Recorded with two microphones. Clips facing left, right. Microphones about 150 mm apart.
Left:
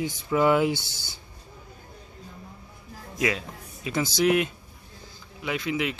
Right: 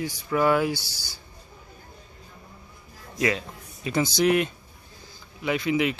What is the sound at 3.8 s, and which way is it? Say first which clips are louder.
Speech: right 1 dB; 5° left (ahead or behind).